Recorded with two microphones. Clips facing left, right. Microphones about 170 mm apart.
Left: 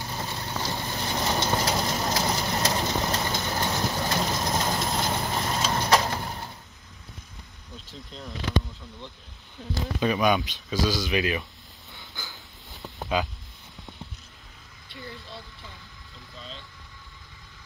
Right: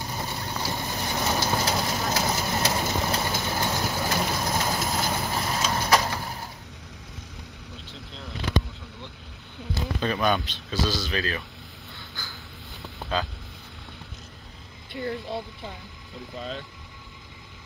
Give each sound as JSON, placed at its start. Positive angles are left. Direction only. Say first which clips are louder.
{"t": 0.1, "sound": "vehicle", "louder": "left 1 dB", "side_deg": -10}
{"t": 9.8, "sound": "speech", "louder": "left 2 dB", "side_deg": 10}
{"t": 11.9, "sound": "vehicle", "louder": "left 1 dB", "side_deg": 20}
{"t": 13.1, "sound": "speech", "louder": "left 2 dB", "side_deg": 15}
{"t": 14.9, "sound": "speech", "louder": "right 11 dB", "side_deg": -60}